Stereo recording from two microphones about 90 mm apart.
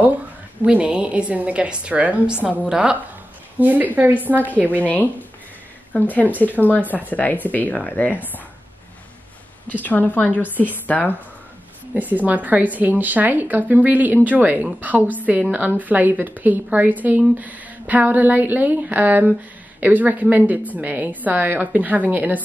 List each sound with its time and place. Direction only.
0.7 s a woman's voice: 10° right (ahead or behind)
5.9 s speech: 15° left (ahead or behind)
9.7 s speech: 20° left (ahead or behind)
11.9 s a woman's voice: 20° right (ahead or behind)